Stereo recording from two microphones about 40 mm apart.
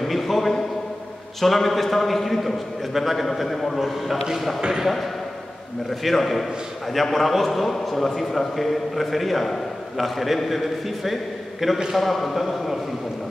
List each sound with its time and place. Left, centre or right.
0.0 s a sound: centre
1.4 s a man's voice: centre
4.6 s speech: centre
4.8 s a man's voice: centre